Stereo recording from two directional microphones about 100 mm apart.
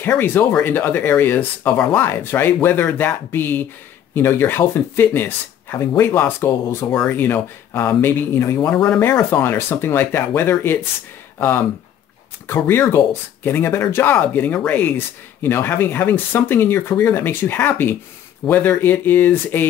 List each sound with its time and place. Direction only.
0.0 s speech: 20° left (ahead or behind)
8.7 s speech: 5° left (ahead or behind)
9.3 s speech: 20° left (ahead or behind)